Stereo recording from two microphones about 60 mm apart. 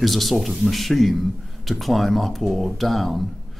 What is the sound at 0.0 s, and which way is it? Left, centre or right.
Speech, centre.